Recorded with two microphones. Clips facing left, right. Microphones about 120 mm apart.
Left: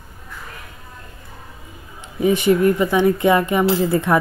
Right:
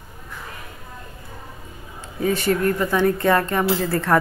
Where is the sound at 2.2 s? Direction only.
15° left (ahead or behind).